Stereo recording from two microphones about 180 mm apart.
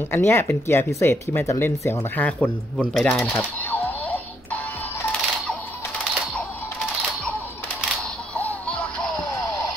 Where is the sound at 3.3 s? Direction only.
10° left (ahead or behind).